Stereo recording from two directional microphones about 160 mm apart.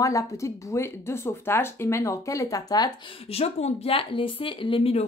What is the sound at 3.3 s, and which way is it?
Speech, 40° left (ahead or behind).